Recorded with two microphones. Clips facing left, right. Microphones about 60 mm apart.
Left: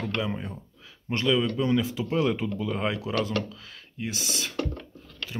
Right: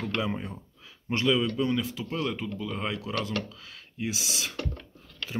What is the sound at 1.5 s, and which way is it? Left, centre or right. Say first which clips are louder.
Speech: left 3 dB; centre.